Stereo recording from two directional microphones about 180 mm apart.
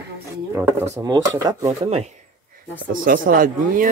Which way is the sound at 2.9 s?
50° right (ahead or behind).